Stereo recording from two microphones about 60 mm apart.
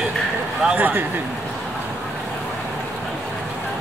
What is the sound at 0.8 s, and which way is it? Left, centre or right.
Speech, right.